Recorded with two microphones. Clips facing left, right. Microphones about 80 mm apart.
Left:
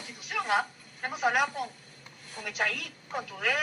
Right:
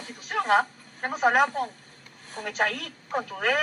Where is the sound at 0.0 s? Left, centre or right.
Right.